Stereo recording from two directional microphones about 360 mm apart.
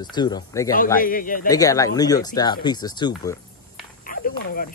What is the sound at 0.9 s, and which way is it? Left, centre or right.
Speech, left.